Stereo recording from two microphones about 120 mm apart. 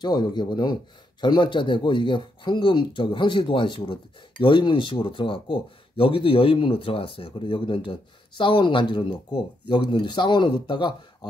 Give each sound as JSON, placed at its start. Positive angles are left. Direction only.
{"t": 0.0, "sound": "speech", "side_deg": 40}